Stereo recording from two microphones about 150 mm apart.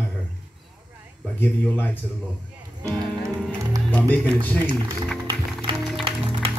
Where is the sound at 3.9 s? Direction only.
10° left (ahead or behind).